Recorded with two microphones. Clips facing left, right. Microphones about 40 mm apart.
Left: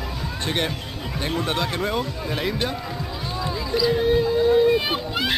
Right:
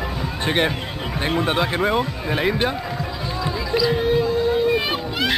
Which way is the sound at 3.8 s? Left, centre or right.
Centre.